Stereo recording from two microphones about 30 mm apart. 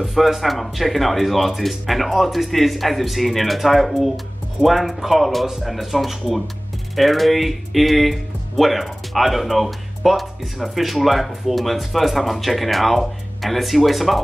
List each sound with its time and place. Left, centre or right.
0.1 s speech: centre